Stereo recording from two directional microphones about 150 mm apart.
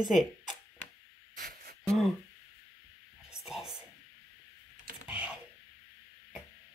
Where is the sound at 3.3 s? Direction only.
Centre (ahead or behind).